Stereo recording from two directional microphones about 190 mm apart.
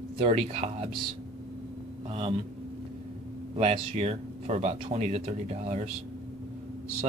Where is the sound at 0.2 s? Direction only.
35° right (ahead or behind).